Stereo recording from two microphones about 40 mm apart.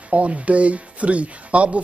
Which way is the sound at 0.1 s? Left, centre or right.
Right.